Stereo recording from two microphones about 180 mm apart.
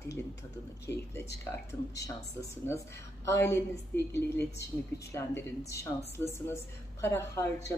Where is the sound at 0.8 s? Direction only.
15° left (ahead or behind).